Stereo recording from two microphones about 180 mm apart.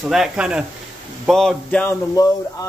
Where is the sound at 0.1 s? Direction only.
5° right (ahead or behind).